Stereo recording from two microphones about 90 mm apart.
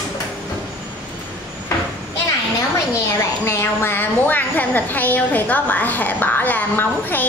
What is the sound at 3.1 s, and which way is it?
A woman's voice, 30° left (ahead or behind).